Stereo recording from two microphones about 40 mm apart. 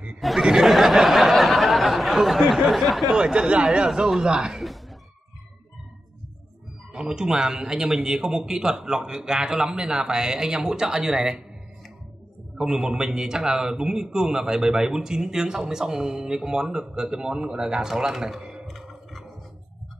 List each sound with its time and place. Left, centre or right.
0.2 s a sound: centre
3.2 s a man's voice: centre
6.9 s a man's voice: centre
12.5 s a man's voice: centre
17.8 s a man's voice: centre
18.4 s a sound: centre
18.7 s music: centre